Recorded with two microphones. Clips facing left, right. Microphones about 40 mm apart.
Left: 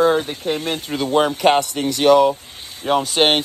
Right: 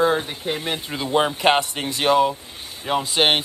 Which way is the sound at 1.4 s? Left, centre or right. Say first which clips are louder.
Left 2 dB; right.